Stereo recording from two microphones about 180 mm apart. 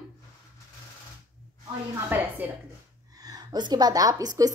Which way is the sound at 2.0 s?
10° right (ahead or behind).